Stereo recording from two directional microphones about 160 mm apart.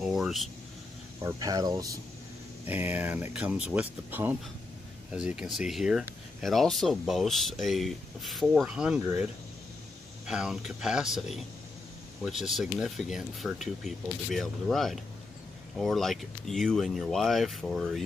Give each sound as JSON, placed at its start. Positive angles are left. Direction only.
{"t": 0.0, "sound": "speech", "side_deg": 0}
{"t": 1.2, "sound": "speech", "side_deg": -20}
{"t": 2.6, "sound": "speech", "side_deg": -10}